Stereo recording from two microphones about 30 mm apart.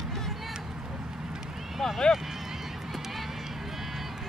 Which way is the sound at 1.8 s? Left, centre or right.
Centre.